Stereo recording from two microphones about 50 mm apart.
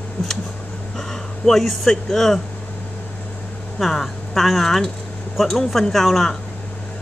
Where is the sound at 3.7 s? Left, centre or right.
Centre.